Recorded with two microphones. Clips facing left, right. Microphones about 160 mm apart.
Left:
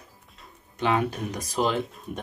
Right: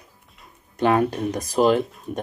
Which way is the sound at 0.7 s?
45° right (ahead or behind).